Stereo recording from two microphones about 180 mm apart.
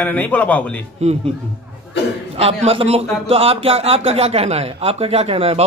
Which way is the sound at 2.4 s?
35° right (ahead or behind).